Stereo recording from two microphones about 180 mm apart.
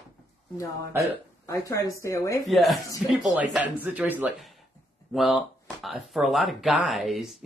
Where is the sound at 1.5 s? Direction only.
15° left (ahead or behind).